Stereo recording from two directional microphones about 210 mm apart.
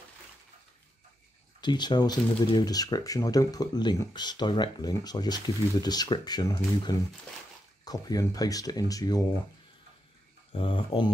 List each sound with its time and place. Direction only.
1.6 s speech: 20° left (ahead or behind)
10.5 s speech: 25° left (ahead or behind)